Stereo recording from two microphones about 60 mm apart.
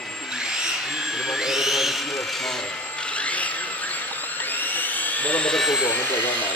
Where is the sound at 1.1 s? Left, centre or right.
Centre.